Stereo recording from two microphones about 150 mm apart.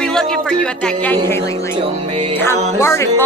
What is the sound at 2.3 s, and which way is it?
Speech, 15° left (ahead or behind).